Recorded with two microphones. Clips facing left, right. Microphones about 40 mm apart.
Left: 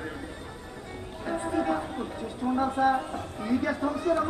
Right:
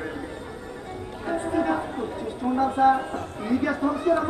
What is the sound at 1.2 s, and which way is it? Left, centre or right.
Music, centre.